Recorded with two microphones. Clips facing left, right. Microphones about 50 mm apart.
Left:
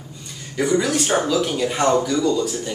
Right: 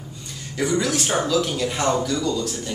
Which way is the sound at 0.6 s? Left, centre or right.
Centre.